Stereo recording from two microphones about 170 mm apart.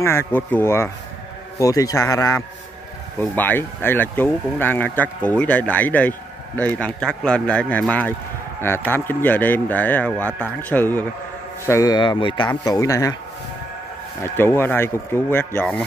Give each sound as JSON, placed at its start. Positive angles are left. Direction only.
{"t": 0.0, "sound": "speech", "side_deg": 15}
{"t": 14.2, "sound": "speech", "side_deg": 15}